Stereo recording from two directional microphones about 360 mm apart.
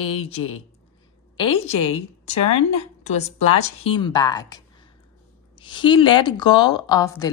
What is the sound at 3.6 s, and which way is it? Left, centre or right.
A woman's voice, centre.